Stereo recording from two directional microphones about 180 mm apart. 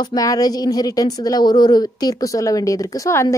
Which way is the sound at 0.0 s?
20° left (ahead or behind).